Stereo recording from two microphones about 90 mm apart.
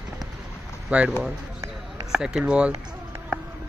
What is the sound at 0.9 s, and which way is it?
Speech, 15° right (ahead or behind).